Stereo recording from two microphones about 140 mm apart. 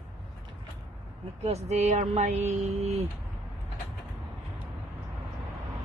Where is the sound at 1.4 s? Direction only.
50° right (ahead or behind).